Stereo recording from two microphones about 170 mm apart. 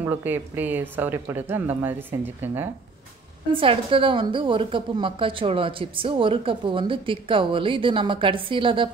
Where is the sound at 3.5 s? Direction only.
30° right (ahead or behind).